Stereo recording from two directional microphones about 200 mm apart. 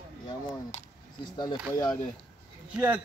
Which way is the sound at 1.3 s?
20° left (ahead or behind).